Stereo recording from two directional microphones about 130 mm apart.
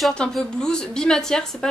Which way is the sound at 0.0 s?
5° left (ahead or behind).